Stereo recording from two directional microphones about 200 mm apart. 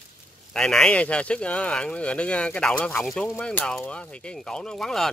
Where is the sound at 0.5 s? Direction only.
5° left (ahead or behind).